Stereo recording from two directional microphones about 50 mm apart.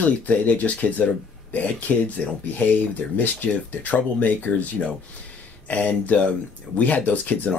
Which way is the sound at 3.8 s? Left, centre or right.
Left.